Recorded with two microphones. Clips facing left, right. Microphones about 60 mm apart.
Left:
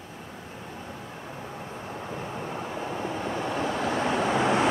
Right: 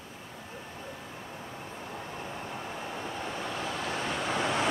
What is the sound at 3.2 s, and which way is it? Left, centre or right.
Vehicle, left.